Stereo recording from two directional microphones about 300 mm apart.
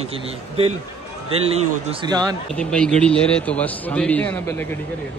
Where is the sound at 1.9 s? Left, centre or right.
Centre.